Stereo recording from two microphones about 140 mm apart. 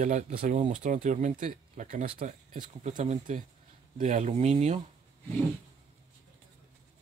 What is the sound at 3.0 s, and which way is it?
Speech, 60° right (ahead or behind).